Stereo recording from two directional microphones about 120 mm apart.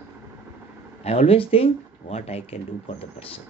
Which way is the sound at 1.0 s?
55° left (ahead or behind).